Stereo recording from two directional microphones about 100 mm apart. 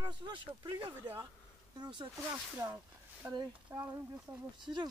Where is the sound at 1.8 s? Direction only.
50° right (ahead or behind).